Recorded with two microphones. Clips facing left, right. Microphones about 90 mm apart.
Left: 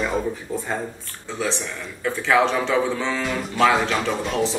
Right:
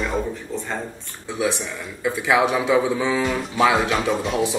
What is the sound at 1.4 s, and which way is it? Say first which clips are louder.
A man's voice: right 3 dB; 10° right (ahead or behind).